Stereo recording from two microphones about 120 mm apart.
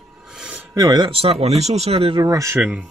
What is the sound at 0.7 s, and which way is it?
Speech, 30° right (ahead or behind).